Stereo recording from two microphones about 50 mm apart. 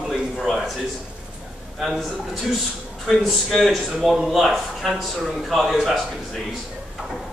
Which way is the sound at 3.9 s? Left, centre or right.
Centre.